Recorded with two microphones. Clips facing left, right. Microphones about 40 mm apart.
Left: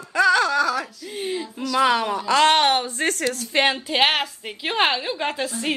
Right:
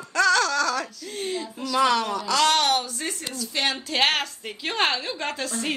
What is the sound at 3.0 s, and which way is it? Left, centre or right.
Speech, left.